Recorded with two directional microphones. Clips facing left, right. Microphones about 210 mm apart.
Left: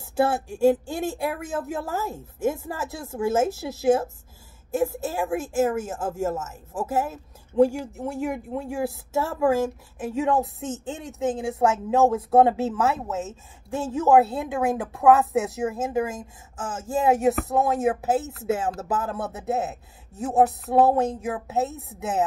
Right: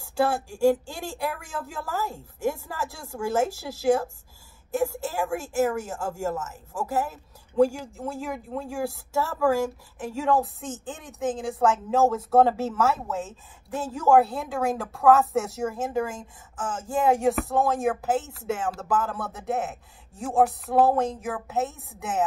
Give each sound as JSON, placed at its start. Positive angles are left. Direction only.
{"t": 0.0, "sound": "a woman's voice", "side_deg": 20}